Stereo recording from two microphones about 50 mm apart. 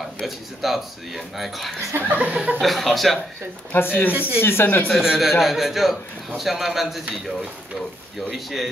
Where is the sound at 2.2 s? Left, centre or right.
Right.